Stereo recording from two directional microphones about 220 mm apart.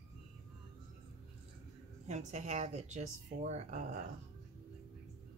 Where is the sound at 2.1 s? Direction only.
30° right (ahead or behind).